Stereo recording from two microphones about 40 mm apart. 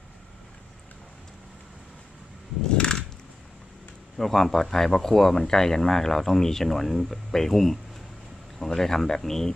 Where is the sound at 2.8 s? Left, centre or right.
Centre.